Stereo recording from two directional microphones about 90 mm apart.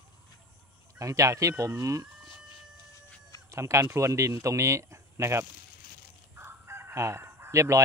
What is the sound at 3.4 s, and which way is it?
Speech, 35° right (ahead or behind).